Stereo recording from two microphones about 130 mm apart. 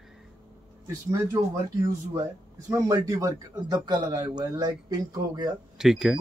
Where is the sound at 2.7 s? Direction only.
25° right (ahead or behind).